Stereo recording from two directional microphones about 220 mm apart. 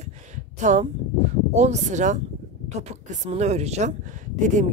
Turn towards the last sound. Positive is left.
turn(degrees=-35)  # may be behind; listen again after turning